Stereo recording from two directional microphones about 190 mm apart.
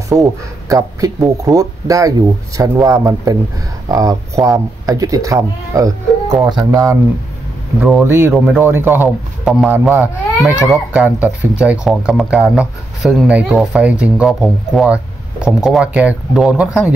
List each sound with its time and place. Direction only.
0.1 s speech: 15° right (ahead or behind)